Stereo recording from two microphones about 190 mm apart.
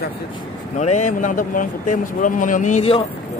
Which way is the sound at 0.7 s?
40° left (ahead or behind).